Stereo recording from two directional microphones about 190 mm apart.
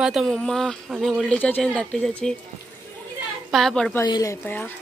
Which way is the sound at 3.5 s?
5° left (ahead or behind).